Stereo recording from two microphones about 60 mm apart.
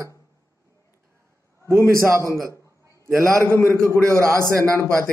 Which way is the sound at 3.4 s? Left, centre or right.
Left.